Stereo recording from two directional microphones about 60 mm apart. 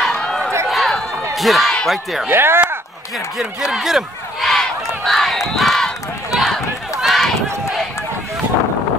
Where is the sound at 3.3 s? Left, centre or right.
Centre.